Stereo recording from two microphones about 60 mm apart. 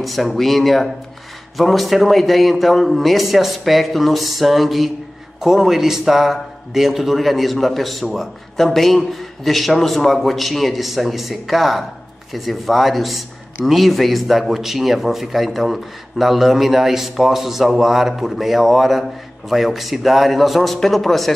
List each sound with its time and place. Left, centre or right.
0.0 s a man's voice: centre